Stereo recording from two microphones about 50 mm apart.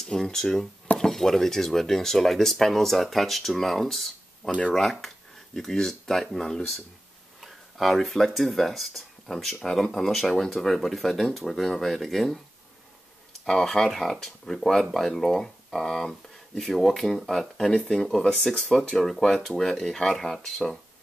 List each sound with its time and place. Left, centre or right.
0.0 s speech: centre
4.4 s speech: centre
7.3 s speech: centre
13.5 s speech: centre